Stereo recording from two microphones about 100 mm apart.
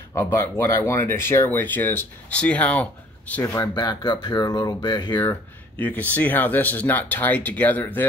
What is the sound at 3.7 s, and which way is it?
Speech, 45° left (ahead or behind).